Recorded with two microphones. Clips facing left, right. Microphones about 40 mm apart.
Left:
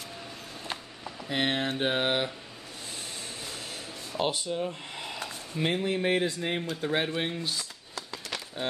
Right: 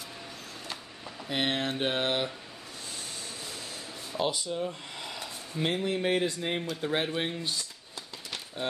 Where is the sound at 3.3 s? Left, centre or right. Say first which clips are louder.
Left 1 dB; left.